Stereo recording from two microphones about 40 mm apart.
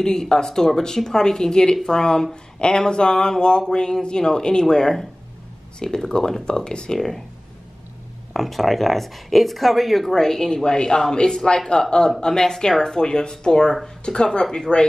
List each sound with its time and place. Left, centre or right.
0.0 s speech: centre
7.0 s speech: centre
8.3 s speech: centre; by 14.6 s left